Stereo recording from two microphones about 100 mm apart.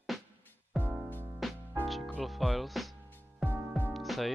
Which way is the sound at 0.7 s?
15° right (ahead or behind).